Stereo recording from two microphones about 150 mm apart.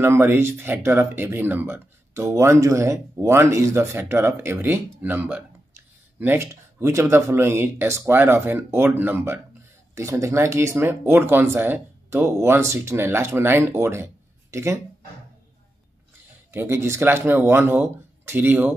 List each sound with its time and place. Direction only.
0.0 s speech: 15° right (ahead or behind)
16.5 s speech: 15° right (ahead or behind)